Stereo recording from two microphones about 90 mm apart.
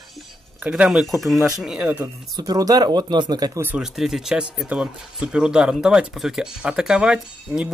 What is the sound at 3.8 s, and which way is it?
Speech, 5° right (ahead or behind).